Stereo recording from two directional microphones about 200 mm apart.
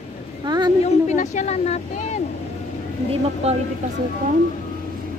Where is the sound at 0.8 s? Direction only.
35° left (ahead or behind).